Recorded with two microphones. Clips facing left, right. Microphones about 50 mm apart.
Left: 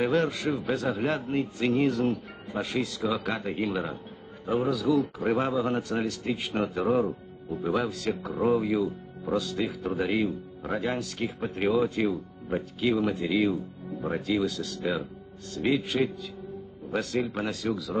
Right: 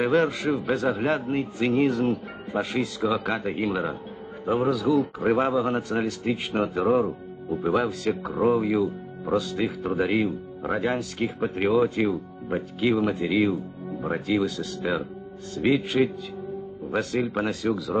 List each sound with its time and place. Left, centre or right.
0.0 s speech: centre
7.6 s speech: centre
9.9 s speech: centre
10.8 s speech: centre
11.3 s speech: centre
17.0 s speech: centre